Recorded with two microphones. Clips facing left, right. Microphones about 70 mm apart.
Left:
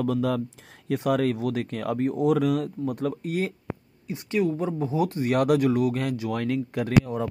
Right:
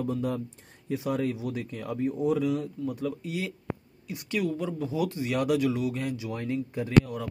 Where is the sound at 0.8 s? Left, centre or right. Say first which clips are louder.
Left 5 dB; left.